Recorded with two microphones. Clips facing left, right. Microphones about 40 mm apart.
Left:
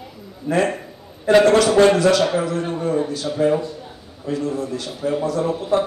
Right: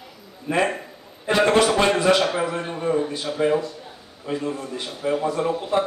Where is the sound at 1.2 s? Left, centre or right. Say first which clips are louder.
Left 4 dB; centre.